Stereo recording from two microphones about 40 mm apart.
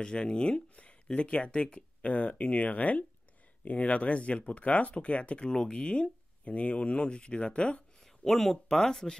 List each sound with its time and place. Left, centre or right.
0.0 s speech: left
8.2 s speech: centre